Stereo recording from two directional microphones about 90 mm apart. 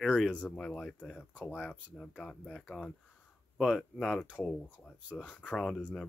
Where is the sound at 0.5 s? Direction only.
10° left (ahead or behind).